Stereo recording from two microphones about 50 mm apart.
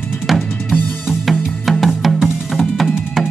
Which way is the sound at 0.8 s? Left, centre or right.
Left.